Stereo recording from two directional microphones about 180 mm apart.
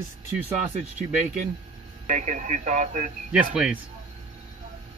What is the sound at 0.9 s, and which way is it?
Speech, 45° right (ahead or behind).